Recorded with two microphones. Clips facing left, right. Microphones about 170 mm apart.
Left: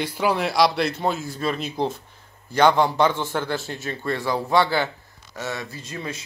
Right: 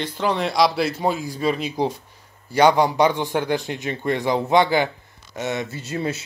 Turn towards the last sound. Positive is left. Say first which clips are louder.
# right 6 dB
turn(degrees=-30)  # may be behind; listen again after turning